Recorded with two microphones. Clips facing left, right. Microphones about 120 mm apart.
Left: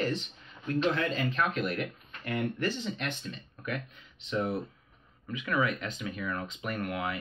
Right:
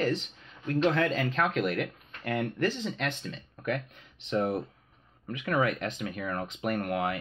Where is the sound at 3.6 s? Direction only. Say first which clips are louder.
Right 5 dB; 60° right (ahead or behind).